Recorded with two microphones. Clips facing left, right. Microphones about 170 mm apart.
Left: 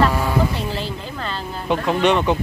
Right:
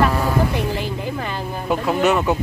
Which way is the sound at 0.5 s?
15° right (ahead or behind).